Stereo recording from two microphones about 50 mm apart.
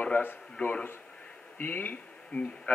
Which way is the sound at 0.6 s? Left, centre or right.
Left.